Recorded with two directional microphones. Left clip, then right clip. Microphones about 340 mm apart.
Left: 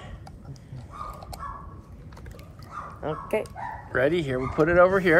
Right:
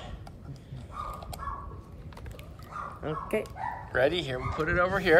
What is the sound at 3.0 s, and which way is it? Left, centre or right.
Speech, centre.